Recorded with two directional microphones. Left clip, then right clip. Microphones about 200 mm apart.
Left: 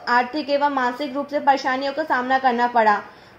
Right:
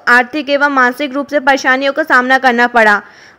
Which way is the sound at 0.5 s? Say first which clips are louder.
Right 9 dB; 35° right (ahead or behind).